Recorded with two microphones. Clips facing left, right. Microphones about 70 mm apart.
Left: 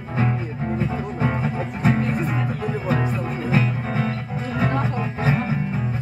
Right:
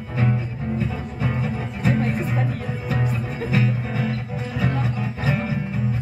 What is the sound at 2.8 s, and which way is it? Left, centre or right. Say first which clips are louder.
Music: left 2 dB; left.